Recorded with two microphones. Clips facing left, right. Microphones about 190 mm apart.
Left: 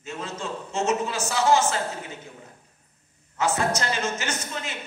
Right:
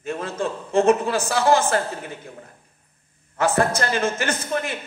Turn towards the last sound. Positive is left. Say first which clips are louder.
# right 7 dB
turn(degrees=-55)  # may be behind; listen again after turning